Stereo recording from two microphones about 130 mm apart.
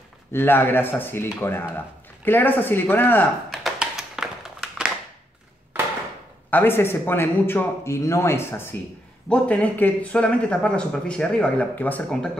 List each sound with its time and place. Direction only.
0.3 s speech: 20° left (ahead or behind)
3.4 s tap: centre (ahead or behind)
6.5 s speech: 15° left (ahead or behind)